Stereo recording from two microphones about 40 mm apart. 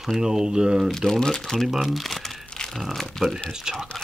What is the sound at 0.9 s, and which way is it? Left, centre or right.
Speech, centre.